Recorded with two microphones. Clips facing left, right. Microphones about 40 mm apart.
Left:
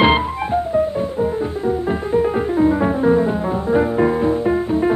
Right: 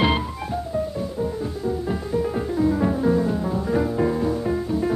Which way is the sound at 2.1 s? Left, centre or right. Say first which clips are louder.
Left 7 dB; left.